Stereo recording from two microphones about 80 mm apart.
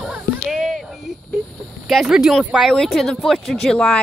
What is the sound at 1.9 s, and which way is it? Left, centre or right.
A woman's voice, centre.